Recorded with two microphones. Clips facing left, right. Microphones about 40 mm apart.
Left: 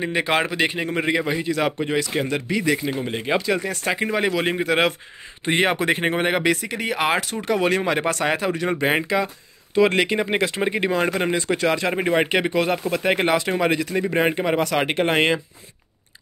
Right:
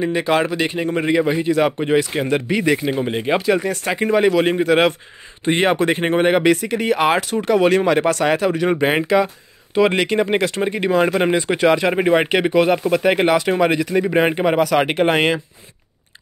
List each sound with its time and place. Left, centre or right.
0.0 s a man's voice: centre
1.4 s speech: centre; by 2.7 s right
2.7 s speech: right
3.1 s speech: centre
3.6 s speech: centre
8.6 s speech: centre
9.9 s speech: centre
10.5 s a man's voice: centre
10.9 s speech: centre
11.2 s speech: right
14.6 s speech: centre